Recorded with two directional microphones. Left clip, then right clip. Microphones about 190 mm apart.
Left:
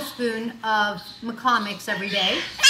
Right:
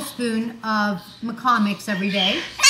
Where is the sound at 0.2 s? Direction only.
Centre (ahead or behind).